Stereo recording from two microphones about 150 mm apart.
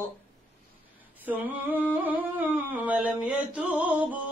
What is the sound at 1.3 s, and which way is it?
Humming, 10° right (ahead or behind).